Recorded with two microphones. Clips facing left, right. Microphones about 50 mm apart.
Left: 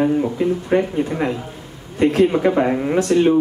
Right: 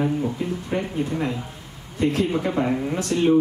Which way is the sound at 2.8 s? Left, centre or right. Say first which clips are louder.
Left 6 dB; left.